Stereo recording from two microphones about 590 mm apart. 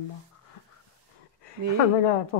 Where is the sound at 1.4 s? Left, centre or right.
Left.